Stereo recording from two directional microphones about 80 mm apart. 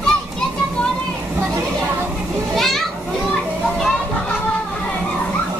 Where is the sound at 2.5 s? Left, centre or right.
Centre.